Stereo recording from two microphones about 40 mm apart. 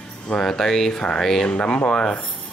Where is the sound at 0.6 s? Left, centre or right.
Centre.